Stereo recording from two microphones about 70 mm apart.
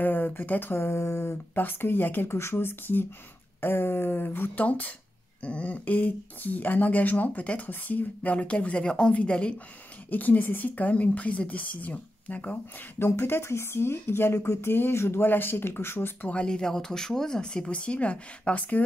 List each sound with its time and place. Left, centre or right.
0.0 s speech: left
1.5 s speech: left
13.0 s speech: left
16.3 s speech: centre